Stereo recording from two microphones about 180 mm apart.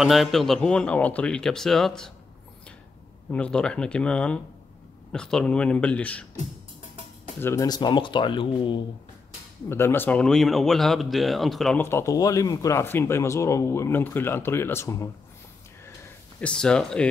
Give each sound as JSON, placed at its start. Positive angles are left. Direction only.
{"t": 0.0, "sound": "speech", "side_deg": 0}
{"t": 3.3, "sound": "speech", "side_deg": 5}
{"t": 7.3, "sound": "speech", "side_deg": 15}
{"t": 9.7, "sound": "speech", "side_deg": 15}
{"t": 11.8, "sound": "speech", "side_deg": 15}
{"t": 16.3, "sound": "speech", "side_deg": 5}